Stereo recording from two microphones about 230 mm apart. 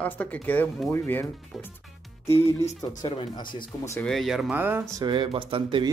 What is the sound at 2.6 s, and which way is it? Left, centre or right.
Speech, left.